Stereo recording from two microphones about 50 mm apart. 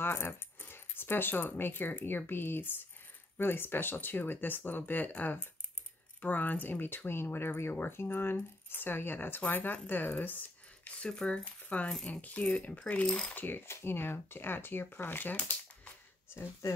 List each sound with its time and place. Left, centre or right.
0.0 s speech: left
11.0 s speech: centre
13.3 s speech: left
16.3 s speech: left